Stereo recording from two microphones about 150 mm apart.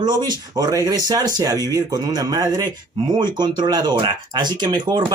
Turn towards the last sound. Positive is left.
turn(degrees=-30)  # may be behind; listen again after turning